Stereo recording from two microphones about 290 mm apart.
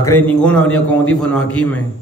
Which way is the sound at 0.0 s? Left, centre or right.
Centre.